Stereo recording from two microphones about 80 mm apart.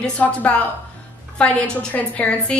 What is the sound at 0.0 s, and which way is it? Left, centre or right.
A woman's voice, centre.